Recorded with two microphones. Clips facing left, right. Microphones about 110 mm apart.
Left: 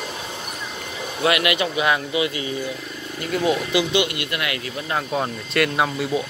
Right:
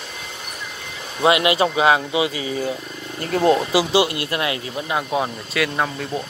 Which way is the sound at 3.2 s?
40° right (ahead or behind).